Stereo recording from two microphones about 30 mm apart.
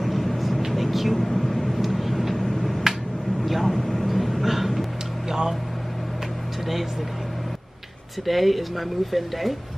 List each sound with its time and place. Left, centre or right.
0.0 s vehicle: centre
1.1 s vehicle: centre
2.0 s vehicle: centre
2.9 s a sound: centre
3.6 s vehicle: centre
4.1 s vehicle: centre
5.3 s vehicle: centre
8.3 s speech: centre